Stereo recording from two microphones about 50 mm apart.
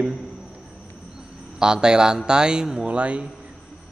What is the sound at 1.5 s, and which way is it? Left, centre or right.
Speech, centre.